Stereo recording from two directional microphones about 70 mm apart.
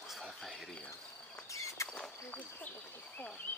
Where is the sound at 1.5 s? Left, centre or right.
Left.